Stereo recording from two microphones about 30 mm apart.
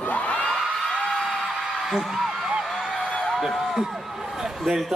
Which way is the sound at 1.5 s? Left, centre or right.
Centre.